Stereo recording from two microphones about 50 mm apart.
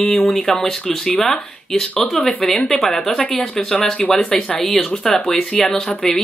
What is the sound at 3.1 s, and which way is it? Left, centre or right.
Speech, left.